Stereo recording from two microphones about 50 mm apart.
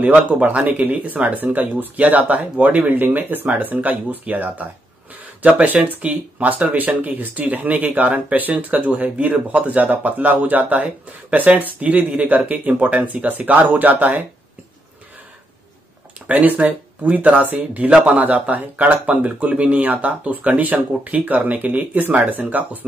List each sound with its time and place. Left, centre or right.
0.0 s speech: right
16.3 s speech: right